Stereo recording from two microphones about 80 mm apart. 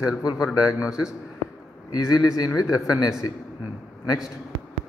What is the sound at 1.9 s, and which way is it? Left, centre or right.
Speech, left.